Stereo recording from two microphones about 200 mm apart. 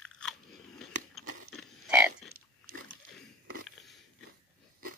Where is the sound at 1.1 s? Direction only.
5° right (ahead or behind).